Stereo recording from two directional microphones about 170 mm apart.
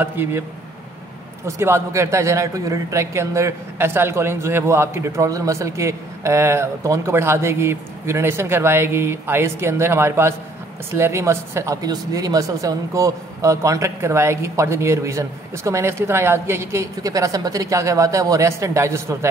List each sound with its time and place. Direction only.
0.0 s a man's voice: 10° right (ahead or behind)
1.4 s a man's voice: 15° right (ahead or behind)